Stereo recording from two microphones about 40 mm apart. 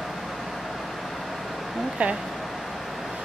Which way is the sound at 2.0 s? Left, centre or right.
Right.